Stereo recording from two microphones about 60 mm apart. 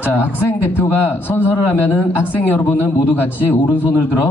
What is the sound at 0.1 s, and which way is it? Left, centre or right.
A man's voice, left.